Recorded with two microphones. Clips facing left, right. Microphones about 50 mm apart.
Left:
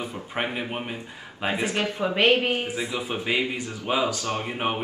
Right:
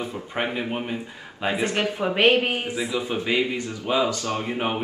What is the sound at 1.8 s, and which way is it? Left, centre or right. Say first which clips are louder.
Speech: right 1 dB; centre.